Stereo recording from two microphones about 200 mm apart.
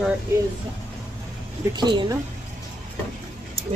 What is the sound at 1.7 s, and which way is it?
Speech, 20° right (ahead or behind).